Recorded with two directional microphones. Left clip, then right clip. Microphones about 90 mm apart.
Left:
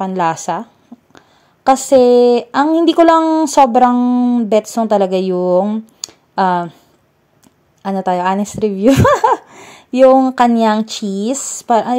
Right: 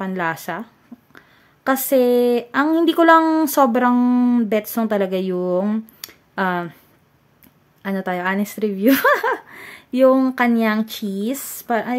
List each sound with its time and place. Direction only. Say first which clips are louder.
0.0 s speech: left 7 dB; 25° left (ahead or behind)
3.2 s speech: left 3 dB; centre (ahead or behind)
3.4 s speech: left 7 dB; 15° left (ahead or behind)
3.9 s speech: left 3 dB; 5° left (ahead or behind)
4.5 s speech: left 7 dB; 20° left (ahead or behind)
5.9 s a sound: left 8 dB; 25° left (ahead or behind)
7.8 s speech: left 7 dB; 25° left (ahead or behind)
9.1 s a sound: left 7 dB; 40° left (ahead or behind)
10.3 s speech: left 7 dB; 40° left (ahead or behind)